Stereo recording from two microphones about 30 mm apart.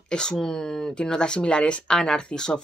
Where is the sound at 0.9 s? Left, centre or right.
Left.